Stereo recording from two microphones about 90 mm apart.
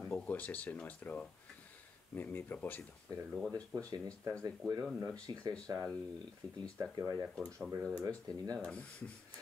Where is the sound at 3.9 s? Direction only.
40° right (ahead or behind).